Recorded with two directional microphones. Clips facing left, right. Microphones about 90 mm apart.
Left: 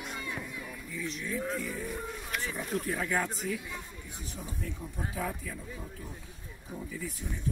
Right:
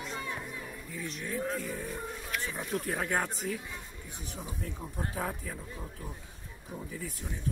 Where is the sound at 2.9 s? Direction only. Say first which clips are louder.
Even; 45° right (ahead or behind).